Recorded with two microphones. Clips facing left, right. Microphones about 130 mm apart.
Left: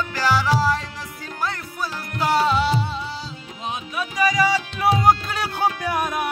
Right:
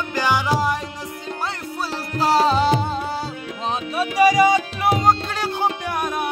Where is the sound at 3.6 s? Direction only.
30° right (ahead or behind).